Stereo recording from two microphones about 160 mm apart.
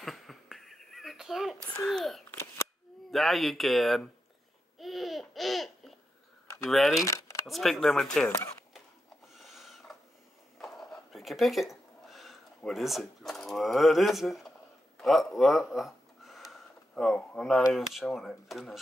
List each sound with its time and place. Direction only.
0.0 s a sound: centre (ahead or behind)
1.9 s speech: centre (ahead or behind)
4.7 s babbling: centre (ahead or behind)
6.6 s speech: centre (ahead or behind)
7.0 s speech: 20° left (ahead or behind)
7.4 s speech: centre (ahead or behind)
9.3 s filing: centre (ahead or behind)
10.6 s a sound: centre (ahead or behind)
17.7 s speech: centre (ahead or behind)